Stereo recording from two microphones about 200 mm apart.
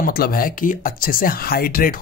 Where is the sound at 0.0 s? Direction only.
50° left (ahead or behind).